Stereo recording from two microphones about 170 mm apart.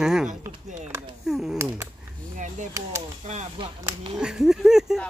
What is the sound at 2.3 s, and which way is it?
Speech, 45° right (ahead or behind).